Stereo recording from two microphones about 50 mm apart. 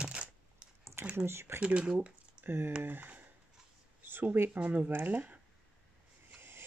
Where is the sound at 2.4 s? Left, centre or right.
Right.